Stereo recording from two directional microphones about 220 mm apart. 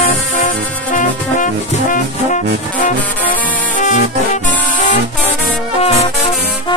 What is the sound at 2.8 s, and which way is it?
Music, 35° left (ahead or behind).